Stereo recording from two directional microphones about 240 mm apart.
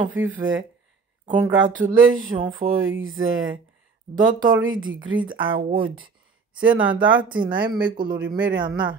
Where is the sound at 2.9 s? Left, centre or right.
Right.